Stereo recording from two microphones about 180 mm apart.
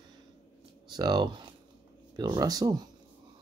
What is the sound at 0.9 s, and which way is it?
Speech, 25° right (ahead or behind).